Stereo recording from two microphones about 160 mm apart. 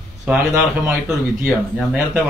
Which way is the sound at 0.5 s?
15° right (ahead or behind).